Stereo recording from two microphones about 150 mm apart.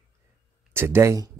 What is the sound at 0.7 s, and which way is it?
Speech, 15° right (ahead or behind).